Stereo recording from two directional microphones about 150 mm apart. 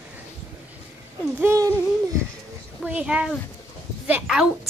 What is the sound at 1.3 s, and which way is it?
Speech, 20° right (ahead or behind).